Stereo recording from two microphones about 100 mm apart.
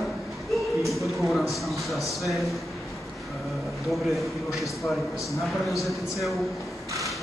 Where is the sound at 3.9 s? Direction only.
Centre (ahead or behind).